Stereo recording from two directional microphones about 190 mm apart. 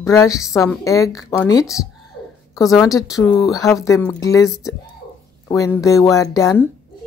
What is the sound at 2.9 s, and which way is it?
Speech, 15° left (ahead or behind).